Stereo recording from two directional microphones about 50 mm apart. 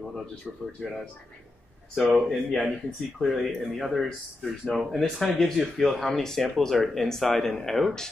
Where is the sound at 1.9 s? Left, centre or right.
Centre.